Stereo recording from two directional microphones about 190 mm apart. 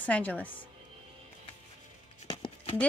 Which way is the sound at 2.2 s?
25° left (ahead or behind).